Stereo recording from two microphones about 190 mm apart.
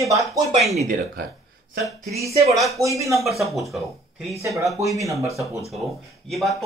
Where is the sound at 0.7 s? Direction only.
45° right (ahead or behind).